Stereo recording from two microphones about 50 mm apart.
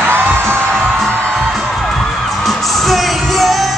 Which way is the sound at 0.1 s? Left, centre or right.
Right.